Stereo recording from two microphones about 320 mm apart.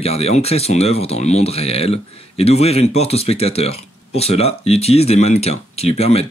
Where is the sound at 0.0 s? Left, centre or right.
Centre.